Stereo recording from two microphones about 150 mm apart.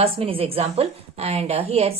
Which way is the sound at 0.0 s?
40° right (ahead or behind).